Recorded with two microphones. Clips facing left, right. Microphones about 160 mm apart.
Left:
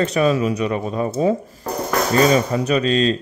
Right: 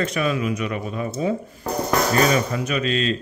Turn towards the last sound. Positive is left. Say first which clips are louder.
# left 5 dB
turn(degrees=35)  # may be behind; listen again after turning